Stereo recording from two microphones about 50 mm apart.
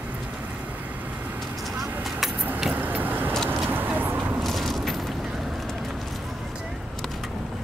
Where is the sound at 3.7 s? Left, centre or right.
Right.